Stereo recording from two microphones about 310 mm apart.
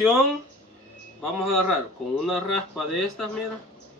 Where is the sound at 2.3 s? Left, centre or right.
Centre.